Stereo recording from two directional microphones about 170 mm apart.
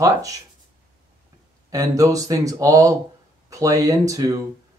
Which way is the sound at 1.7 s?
20° right (ahead or behind).